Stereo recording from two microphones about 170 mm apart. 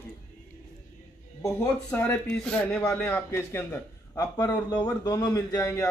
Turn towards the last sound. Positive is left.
turn(degrees=20)  # may be behind; listen again after turning